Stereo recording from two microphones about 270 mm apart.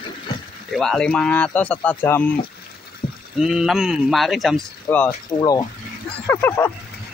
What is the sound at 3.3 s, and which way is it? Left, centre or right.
Speech, centre.